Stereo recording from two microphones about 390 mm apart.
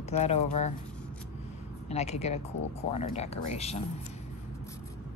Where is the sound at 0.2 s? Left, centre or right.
Centre.